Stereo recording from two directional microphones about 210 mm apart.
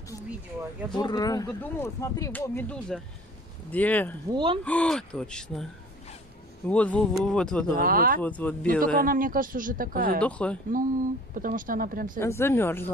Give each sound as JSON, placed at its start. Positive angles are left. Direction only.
{"t": 0.3, "sound": "speech", "side_deg": -5}
{"t": 0.9, "sound": "speech", "side_deg": 20}
{"t": 4.3, "sound": "speech", "side_deg": -20}
{"t": 4.6, "sound": "speech", "side_deg": 5}
{"t": 7.7, "sound": "speech", "side_deg": -45}
{"t": 8.2, "sound": "speech", "side_deg": 5}
{"t": 9.0, "sound": "speech", "side_deg": -40}
{"t": 10.2, "sound": "speech", "side_deg": 5}
{"t": 11.3, "sound": "speech", "side_deg": -40}
{"t": 12.2, "sound": "speech", "side_deg": 10}